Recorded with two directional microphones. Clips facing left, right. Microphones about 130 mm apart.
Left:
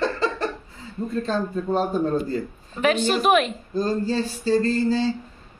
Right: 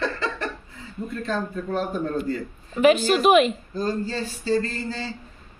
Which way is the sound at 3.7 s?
35° left (ahead or behind).